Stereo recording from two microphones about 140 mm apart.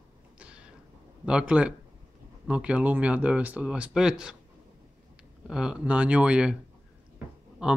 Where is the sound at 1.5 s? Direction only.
10° right (ahead or behind).